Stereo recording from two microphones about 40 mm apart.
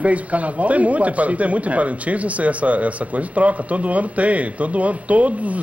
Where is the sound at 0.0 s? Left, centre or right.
Right.